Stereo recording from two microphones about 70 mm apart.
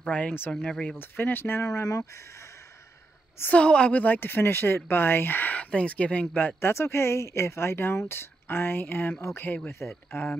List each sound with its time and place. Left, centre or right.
0.0 s speech: left
0.9 s speech: left
1.6 s speech: left
3.5 s speech: centre
6.6 s speech: left